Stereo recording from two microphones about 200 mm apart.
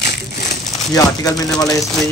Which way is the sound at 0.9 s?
20° left (ahead or behind).